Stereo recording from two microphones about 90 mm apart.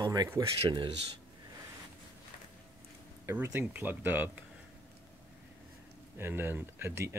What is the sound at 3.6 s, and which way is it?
Speech, 15° right (ahead or behind).